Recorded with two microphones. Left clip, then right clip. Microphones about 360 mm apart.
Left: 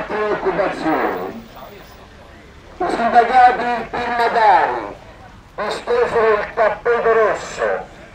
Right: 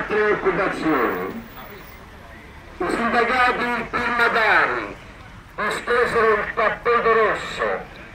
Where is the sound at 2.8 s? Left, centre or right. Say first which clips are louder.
Left 6 dB; left.